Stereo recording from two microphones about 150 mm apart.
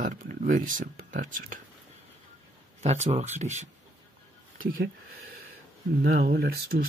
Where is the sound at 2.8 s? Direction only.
45° right (ahead or behind).